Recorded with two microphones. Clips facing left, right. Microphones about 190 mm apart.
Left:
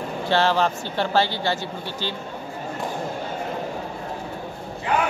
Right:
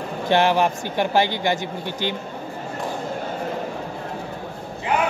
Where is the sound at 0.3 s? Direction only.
15° right (ahead or behind).